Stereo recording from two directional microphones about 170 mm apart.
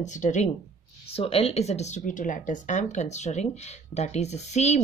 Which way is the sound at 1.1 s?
35° left (ahead or behind).